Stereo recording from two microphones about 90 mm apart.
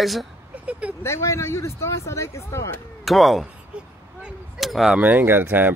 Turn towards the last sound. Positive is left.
turn(degrees=-25)  # may be behind; listen again after turning